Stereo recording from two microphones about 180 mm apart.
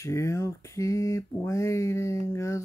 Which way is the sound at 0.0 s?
15° left (ahead or behind).